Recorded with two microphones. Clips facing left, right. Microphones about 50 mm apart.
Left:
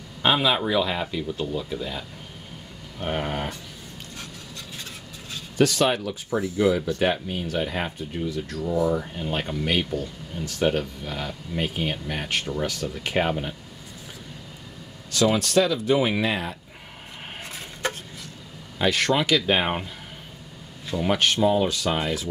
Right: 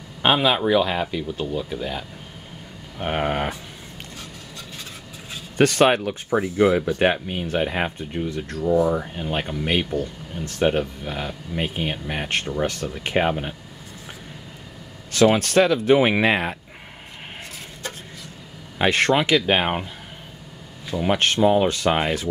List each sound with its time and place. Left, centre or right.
0.2 s speech: right
3.0 s speech: right
5.6 s speech: right
8.6 s speech: right
15.0 s speech: right
18.8 s speech: right
19.1 s speech: right
21.2 s speech: right
21.6 s speech: right